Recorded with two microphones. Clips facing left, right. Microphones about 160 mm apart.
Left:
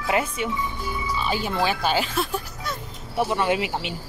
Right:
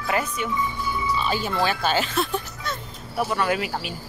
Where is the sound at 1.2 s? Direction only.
15° left (ahead or behind).